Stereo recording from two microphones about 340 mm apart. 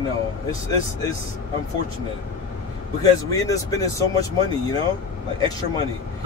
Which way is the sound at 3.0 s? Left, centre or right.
Centre.